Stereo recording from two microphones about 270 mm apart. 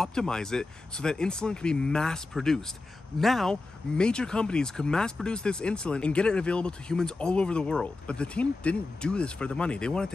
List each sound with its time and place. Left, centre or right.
0.0 s speech: centre